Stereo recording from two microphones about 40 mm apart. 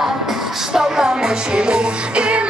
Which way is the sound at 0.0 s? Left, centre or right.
Centre.